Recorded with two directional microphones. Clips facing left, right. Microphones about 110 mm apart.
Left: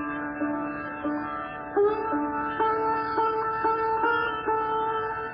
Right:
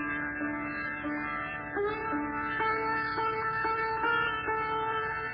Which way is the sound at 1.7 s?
30° left (ahead or behind).